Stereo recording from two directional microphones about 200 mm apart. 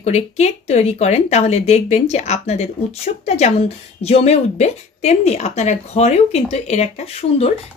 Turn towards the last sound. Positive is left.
turn(degrees=30)  # may be behind; listen again after turning